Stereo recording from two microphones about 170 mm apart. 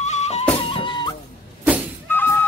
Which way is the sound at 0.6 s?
30° left (ahead or behind).